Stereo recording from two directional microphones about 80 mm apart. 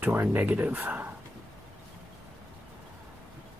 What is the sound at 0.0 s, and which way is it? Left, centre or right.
Speech, right.